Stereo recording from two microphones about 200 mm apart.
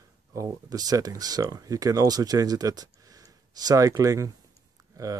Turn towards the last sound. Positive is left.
turn(degrees=-15)  # may be behind; listen again after turning